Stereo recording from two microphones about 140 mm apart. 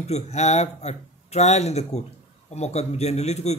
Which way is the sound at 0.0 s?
50° left (ahead or behind).